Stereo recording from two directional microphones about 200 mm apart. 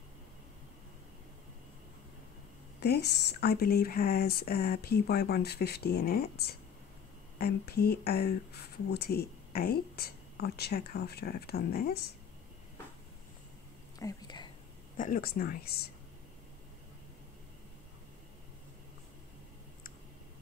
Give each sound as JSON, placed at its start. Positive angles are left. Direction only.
{"t": 2.8, "sound": "speech", "side_deg": 55}
{"t": 13.9, "sound": "speech", "side_deg": 20}
{"t": 15.0, "sound": "speech", "side_deg": 40}